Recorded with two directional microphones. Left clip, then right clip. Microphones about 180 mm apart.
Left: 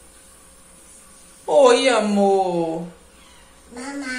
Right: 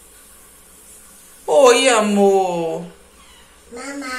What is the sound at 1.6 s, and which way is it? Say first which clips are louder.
A man's voice: right 2 dB; 10° left (ahead or behind).